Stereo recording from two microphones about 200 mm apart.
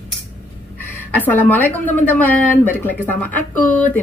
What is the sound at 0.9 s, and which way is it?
A woman's voice, 10° left (ahead or behind).